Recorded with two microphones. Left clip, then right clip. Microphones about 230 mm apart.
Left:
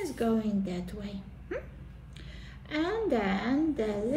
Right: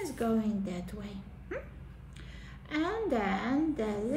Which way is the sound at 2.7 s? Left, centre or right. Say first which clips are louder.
Left 2 dB; centre.